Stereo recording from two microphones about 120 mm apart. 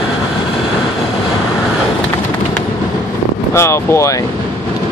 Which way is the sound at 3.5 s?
25° left (ahead or behind).